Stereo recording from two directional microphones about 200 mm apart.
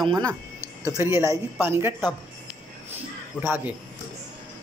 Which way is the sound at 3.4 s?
10° right (ahead or behind).